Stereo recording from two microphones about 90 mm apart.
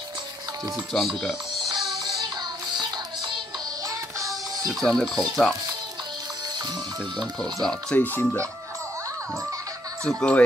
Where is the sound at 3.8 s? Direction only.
40° right (ahead or behind).